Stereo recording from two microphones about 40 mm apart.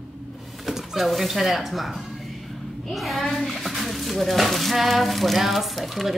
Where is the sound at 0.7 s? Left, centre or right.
Centre.